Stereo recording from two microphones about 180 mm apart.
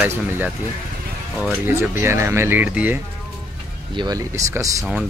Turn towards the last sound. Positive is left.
turn(degrees=-20)  # may be behind; listen again after turning